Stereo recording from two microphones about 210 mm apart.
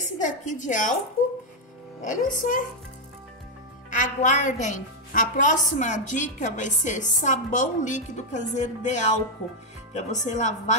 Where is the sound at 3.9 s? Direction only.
35° left (ahead or behind).